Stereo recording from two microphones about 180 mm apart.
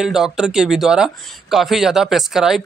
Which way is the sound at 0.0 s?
Centre (ahead or behind).